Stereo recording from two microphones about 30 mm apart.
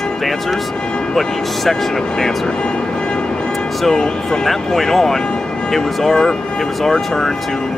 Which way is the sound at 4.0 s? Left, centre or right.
Centre.